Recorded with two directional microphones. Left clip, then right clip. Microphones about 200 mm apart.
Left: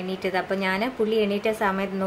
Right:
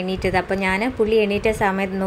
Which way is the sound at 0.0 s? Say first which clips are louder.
Right 5 dB; 20° right (ahead or behind).